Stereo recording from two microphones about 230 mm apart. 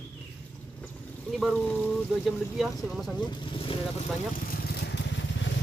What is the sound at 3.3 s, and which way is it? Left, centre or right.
Speech, left.